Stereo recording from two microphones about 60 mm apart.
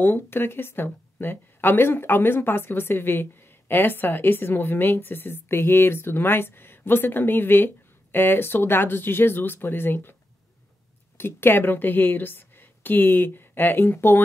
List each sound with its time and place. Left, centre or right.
0.0 s a woman's voice: left
11.1 s a woman's voice: left